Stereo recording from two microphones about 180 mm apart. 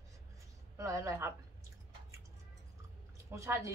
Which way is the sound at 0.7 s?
15° right (ahead or behind).